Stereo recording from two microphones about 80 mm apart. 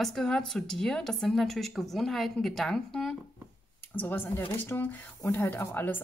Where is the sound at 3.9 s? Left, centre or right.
Left.